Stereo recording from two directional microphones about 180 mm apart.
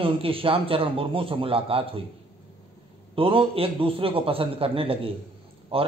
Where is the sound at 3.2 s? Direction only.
30° right (ahead or behind).